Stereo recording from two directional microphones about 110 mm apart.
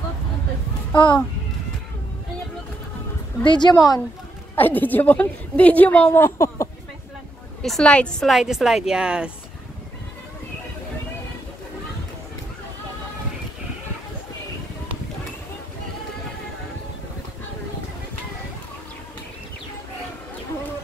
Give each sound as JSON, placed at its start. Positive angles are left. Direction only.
{"t": 0.9, "sound": "a child's voice", "side_deg": 45}
{"t": 3.4, "sound": "a woman's voice", "side_deg": 40}
{"t": 4.6, "sound": "a woman's voice", "side_deg": 15}
{"t": 7.6, "sound": "a woman's voice", "side_deg": 5}